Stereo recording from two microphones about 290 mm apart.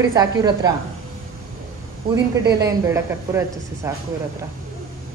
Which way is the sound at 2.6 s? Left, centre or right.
Centre.